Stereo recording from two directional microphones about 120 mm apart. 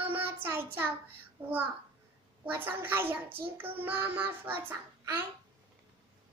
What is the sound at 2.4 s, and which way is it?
A child's voice, 15° right (ahead or behind).